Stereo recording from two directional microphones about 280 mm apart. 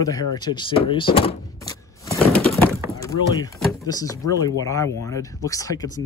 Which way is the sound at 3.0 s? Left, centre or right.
Centre.